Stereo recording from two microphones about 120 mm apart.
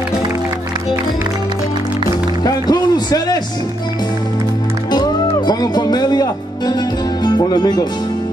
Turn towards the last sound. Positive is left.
turn(degrees=35)  # may be behind; listen again after turning